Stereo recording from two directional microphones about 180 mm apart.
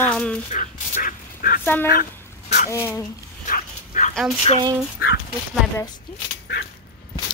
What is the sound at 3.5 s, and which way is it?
Dog, 45° left (ahead or behind).